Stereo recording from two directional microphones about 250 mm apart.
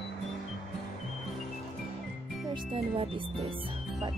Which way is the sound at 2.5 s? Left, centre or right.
Right.